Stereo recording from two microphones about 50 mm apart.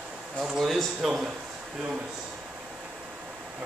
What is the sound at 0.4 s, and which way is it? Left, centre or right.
Speech, centre.